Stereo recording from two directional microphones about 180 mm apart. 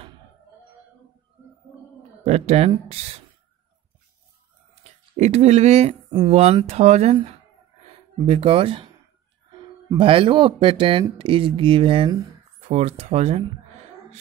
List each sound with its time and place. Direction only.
2.2 s speech: 40° right (ahead or behind)
5.1 s speech: 35° right (ahead or behind)
9.9 s speech: 30° right (ahead or behind)